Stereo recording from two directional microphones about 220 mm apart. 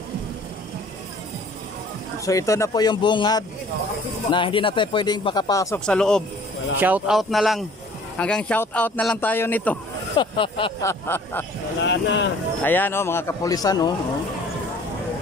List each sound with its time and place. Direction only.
2.2 s speech: 15° left (ahead or behind)
5.9 s speech: 5° left (ahead or behind)
10.1 s speech: 25° left (ahead or behind)
11.8 s speech: 55° left (ahead or behind)
12.6 s speech: 10° left (ahead or behind)